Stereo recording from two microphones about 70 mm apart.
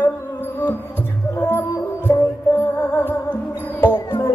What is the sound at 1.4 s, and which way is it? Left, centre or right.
Music, left.